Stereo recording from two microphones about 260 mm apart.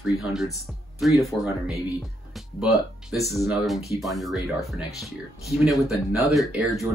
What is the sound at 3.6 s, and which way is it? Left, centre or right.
Speech, centre.